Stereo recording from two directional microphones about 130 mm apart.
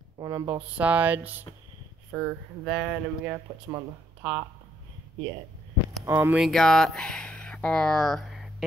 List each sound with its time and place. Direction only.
0.2 s speech: 25° right (ahead or behind)
0.7 s speech: 10° right (ahead or behind)
3.7 s speech: 20° right (ahead or behind)
6.0 s speech: 15° right (ahead or behind)
6.3 s speech: centre (ahead or behind)